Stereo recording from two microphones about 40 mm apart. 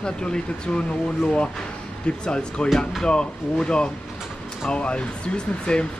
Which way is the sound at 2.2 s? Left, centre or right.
Left.